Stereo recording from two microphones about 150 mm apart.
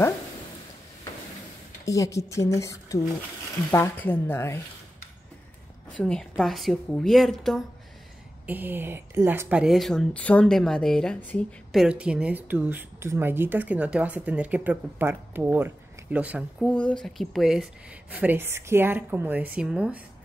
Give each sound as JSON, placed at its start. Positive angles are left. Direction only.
{"t": 1.9, "sound": "a woman's voice", "side_deg": 20}
{"t": 5.9, "sound": "speech", "side_deg": 5}
{"t": 8.5, "sound": "a woman's voice", "side_deg": -15}
{"t": 11.8, "sound": "a woman's voice", "side_deg": -5}